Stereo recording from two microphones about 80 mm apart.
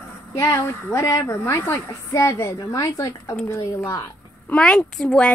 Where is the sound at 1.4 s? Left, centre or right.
Left.